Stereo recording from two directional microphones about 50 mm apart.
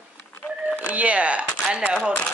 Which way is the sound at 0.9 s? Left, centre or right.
Right.